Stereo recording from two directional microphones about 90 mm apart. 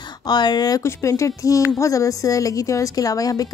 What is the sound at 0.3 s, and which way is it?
Speech, 50° left (ahead or behind).